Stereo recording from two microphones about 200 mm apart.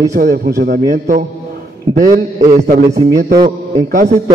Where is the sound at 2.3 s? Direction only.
40° right (ahead or behind).